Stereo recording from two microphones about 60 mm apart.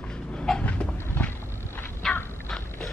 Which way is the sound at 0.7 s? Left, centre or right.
Centre.